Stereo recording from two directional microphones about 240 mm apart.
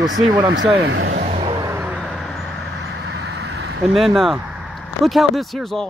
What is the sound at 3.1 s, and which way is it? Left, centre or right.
Vehicle, right.